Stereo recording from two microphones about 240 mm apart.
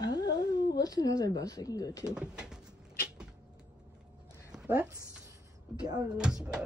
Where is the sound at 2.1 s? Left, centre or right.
Centre.